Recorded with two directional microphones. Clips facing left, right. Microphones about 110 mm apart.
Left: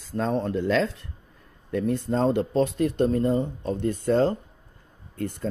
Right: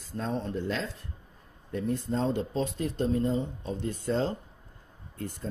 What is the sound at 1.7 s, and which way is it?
Speech, 75° left (ahead or behind).